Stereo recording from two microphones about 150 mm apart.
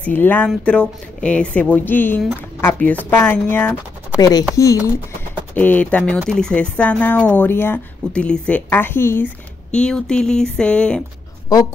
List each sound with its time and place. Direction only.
0.0 s speech: 10° left (ahead or behind)
4.2 s speech: 25° left (ahead or behind); by 11.0 s 5° left (ahead or behind)